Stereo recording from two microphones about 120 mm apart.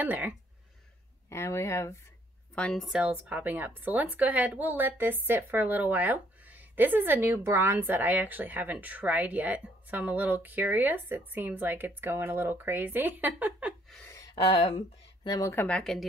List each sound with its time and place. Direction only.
0.0 s a woman's voice: 15° right (ahead or behind)
1.3 s speech: 25° left (ahead or behind)
2.5 s a woman's voice: 5° left (ahead or behind); by 13.7 s 15° right (ahead or behind)
14.0 s a sound: 30° left (ahead or behind)
15.2 s speech: 35° left (ahead or behind)
15.5 s speech: 15° left (ahead or behind)
15.8 s speech: centre (ahead or behind)